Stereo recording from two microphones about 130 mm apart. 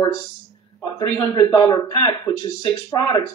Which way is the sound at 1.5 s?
30° left (ahead or behind).